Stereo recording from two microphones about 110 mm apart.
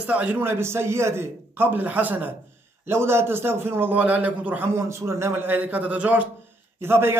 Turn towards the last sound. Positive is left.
turn(degrees=-20)  # may be behind; listen again after turning